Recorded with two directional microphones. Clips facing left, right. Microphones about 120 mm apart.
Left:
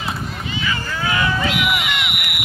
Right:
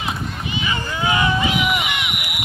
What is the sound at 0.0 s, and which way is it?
Run, 20° right (ahead or behind).